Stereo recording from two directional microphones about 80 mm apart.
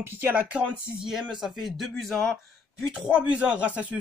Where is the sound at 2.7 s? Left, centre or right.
Centre.